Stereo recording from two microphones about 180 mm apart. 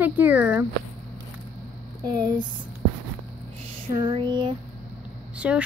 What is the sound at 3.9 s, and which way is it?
Speech, 25° right (ahead or behind).